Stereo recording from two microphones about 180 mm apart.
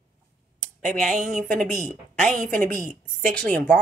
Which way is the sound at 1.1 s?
45° right (ahead or behind).